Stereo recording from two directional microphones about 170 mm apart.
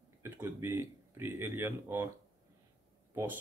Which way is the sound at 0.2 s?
15° right (ahead or behind).